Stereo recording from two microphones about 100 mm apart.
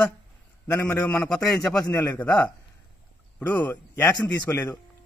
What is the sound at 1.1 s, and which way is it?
A man's voice, 15° left (ahead or behind).